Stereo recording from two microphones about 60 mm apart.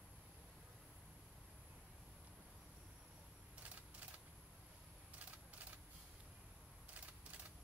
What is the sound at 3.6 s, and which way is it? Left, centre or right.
Typewriter, right.